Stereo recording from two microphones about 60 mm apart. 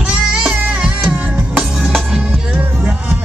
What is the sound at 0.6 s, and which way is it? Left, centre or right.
Music, right.